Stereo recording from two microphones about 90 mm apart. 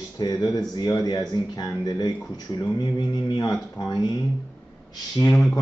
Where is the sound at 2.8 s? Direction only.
55° left (ahead or behind).